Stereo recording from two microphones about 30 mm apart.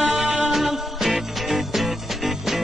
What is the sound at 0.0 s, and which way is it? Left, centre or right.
Music, centre.